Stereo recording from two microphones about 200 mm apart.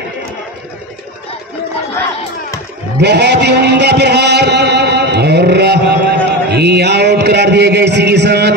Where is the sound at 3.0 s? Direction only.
55° right (ahead or behind).